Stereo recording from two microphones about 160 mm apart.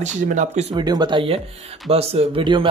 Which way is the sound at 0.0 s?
50° right (ahead or behind).